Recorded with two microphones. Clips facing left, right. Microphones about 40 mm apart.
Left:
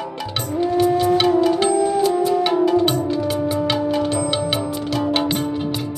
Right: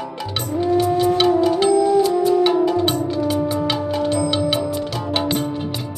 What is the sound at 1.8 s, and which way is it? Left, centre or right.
Music, centre.